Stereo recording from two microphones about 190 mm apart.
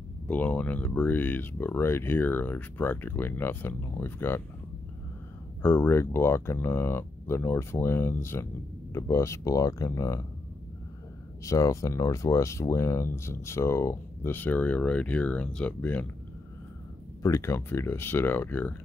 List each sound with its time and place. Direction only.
0.3 s speech: 10° left (ahead or behind)
5.6 s speech: 10° left (ahead or behind)
11.4 s speech: 15° left (ahead or behind)
17.2 s speech: 15° left (ahead or behind)